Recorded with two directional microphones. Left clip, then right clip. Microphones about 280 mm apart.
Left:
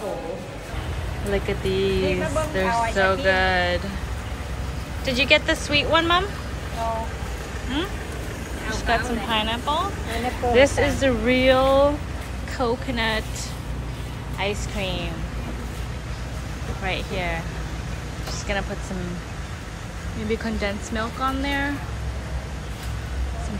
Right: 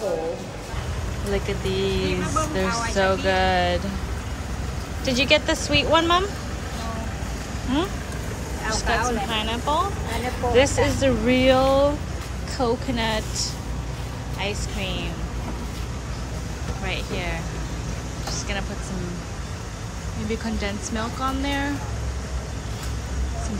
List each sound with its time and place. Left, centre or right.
1.3 s speech: centre
5.0 s speech: centre
8.8 s speech: centre
14.4 s a woman's voice: centre
16.8 s speech: centre
20.2 s speech: centre